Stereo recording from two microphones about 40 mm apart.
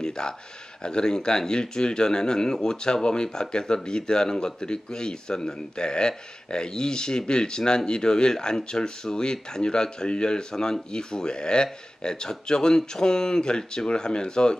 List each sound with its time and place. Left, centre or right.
0.2 s speech: centre